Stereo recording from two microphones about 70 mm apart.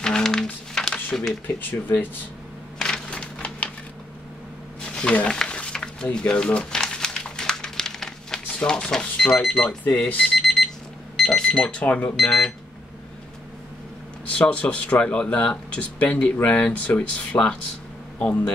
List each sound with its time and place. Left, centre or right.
0.0 s a sound: centre
1.6 s speech: left
2.8 s a sound: centre
4.8 s a sound: centre
6.1 s crumpling: centre
8.5 s speech: centre
11.1 s alarm clock: centre
11.5 s speech: centre
12.2 s speech: centre
14.3 s speech: centre